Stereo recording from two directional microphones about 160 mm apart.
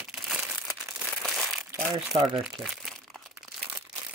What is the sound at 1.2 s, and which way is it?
Crumpling, centre (ahead or behind).